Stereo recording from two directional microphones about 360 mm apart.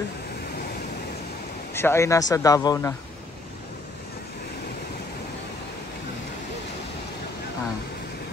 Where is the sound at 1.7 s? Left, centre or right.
Centre.